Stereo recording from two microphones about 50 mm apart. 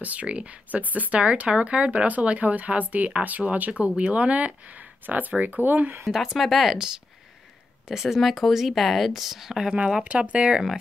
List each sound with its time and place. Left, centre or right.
0.0 s speech: right
6.1 s speech: centre